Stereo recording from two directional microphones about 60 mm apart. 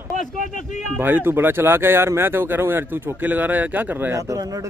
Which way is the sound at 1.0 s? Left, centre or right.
Right.